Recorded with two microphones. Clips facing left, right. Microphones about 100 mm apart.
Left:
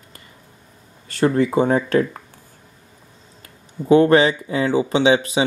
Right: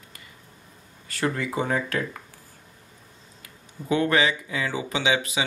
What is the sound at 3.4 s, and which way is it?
Speech, 35° left (ahead or behind).